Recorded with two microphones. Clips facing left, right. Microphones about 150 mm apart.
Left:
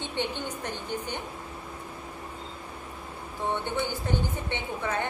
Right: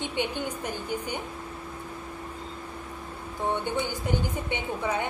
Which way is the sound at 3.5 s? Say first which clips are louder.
Even; 15° right (ahead or behind).